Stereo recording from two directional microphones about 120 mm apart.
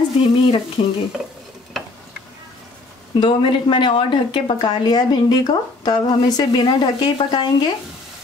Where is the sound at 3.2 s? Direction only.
45° left (ahead or behind).